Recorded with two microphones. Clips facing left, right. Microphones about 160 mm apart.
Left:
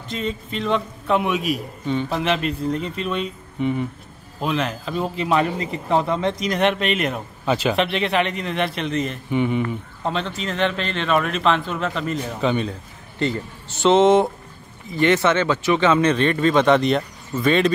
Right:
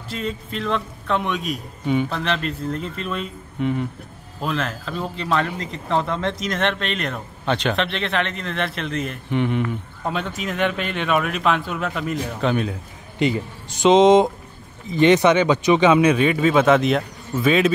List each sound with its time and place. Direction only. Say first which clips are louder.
0.1 s a man's voice: left 1 dB; centre (ahead or behind)
13.2 s speech: right 2 dB; 15° right (ahead or behind)